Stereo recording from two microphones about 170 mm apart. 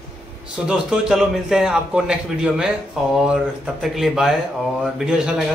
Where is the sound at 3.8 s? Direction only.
Centre (ahead or behind).